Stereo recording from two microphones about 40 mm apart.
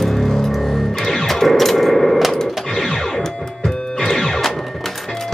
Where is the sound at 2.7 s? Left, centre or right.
Centre.